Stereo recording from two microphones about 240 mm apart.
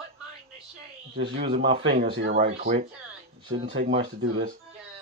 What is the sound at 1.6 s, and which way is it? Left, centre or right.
A man's voice, right.